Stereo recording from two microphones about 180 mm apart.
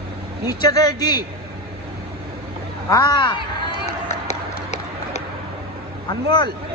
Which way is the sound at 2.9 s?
25° left (ahead or behind).